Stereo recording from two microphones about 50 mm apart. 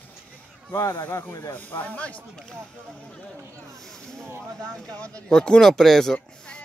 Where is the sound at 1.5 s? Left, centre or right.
Left.